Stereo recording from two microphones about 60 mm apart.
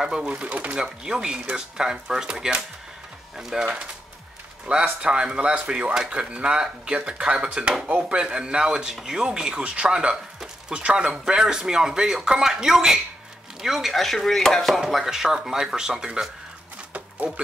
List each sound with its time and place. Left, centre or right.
0.0 s speech: centre
0.3 s speech: right
0.7 s speech: centre
13.6 s chopping: centre
14.9 s speech: centre